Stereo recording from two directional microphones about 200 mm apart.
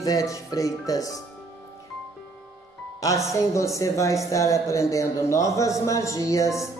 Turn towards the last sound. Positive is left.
turn(degrees=15)  # may be behind; listen again after turning